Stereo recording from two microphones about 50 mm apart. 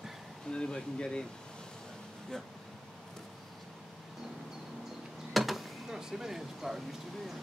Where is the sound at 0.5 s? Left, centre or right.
Centre.